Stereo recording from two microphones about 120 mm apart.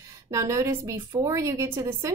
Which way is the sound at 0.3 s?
25° right (ahead or behind).